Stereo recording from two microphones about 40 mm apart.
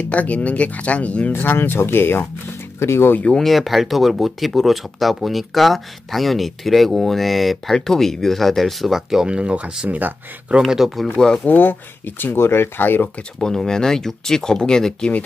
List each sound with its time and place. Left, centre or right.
0.1 s speech: left
1.3 s speech: left
3.3 s speech: centre
7.7 s speech: centre
9.2 s speech: right
9.8 s speech: right
10.6 s speech: centre
11.1 s speech: centre
11.4 s speech: left
12.2 s speech: left
13.4 s speech: centre